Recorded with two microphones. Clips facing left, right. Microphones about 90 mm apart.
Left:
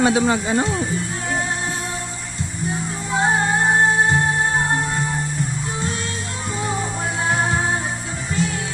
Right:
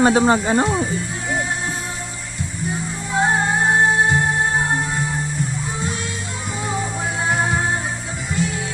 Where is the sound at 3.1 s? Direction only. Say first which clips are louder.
Even; centre (ahead or behind).